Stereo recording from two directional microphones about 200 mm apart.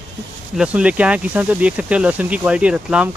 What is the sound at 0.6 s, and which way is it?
Speech, 5° right (ahead or behind).